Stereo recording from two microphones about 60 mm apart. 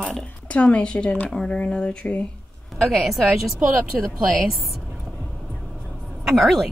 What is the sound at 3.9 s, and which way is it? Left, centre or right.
Speech, centre.